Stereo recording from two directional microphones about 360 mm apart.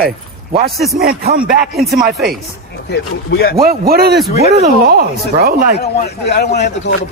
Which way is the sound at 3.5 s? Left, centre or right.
Right.